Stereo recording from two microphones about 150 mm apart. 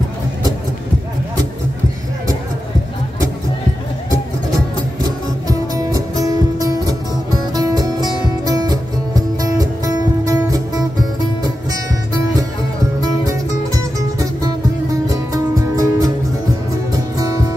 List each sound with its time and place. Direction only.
5.5 s music: 25° right (ahead or behind)
15.3 s music: 25° right (ahead or behind)
17.2 s music: 25° right (ahead or behind)